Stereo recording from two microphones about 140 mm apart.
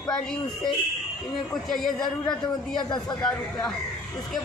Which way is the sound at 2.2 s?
30° left (ahead or behind).